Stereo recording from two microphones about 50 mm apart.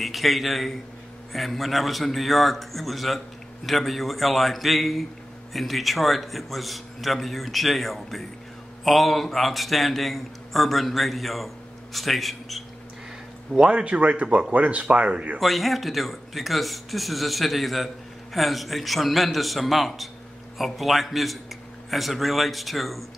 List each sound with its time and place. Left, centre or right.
0.0 s speech: centre
13.7 s speech: right
15.3 s speech: centre